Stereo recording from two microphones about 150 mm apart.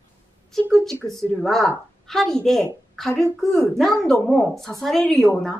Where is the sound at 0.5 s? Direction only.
5° left (ahead or behind).